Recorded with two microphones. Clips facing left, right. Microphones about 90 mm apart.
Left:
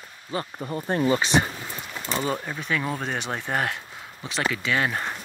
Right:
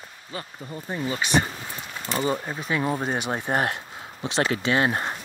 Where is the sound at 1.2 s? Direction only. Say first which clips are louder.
Left 1 dB; 20° left (ahead or behind).